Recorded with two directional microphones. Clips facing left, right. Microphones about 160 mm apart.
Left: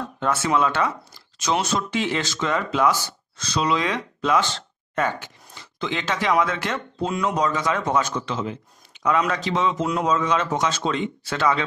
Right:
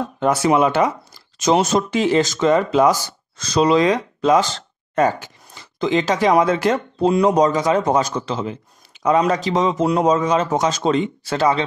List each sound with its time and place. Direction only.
0.4 s speech: 15° right (ahead or behind)
1.4 s speech: 45° right (ahead or behind)